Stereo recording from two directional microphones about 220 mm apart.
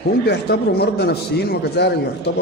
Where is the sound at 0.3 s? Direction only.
45° left (ahead or behind).